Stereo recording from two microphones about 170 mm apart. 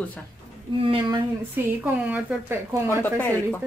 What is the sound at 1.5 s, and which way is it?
A woman's voice, 10° right (ahead or behind).